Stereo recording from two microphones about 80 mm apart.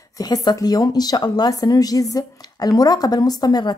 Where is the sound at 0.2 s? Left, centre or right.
Left.